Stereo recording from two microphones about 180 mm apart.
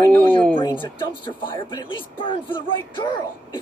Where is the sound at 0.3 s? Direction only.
10° left (ahead or behind).